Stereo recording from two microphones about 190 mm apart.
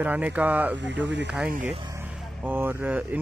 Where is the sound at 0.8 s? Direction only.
70° right (ahead or behind).